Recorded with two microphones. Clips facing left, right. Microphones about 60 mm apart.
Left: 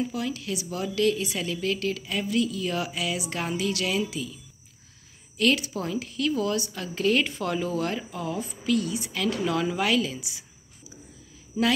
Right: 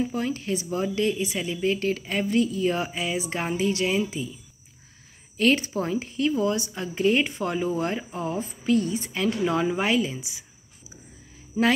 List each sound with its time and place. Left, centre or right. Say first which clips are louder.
0.0 s a woman's voice: right 2 dB; right
5.4 s a woman's voice: right 2 dB; right
11.6 s speech: right 2 dB; right